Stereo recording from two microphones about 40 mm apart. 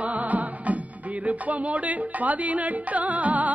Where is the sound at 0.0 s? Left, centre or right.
Right.